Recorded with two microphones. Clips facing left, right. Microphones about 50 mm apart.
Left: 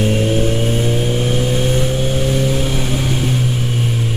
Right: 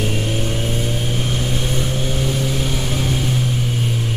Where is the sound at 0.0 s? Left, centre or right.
Centre.